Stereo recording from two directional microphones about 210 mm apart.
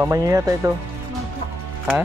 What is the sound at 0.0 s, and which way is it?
Speech, 15° right (ahead or behind).